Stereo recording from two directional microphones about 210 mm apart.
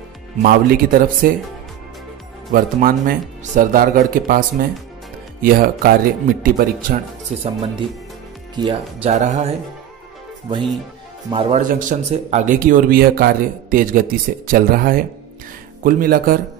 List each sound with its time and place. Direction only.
0.4 s speech: 45° right (ahead or behind)
2.5 s speech: 40° right (ahead or behind)
8.5 s speech: 20° right (ahead or behind)
9.1 s speech: 35° right (ahead or behind)
11.2 s speech: 25° right (ahead or behind); by 16.3 s 40° right (ahead or behind)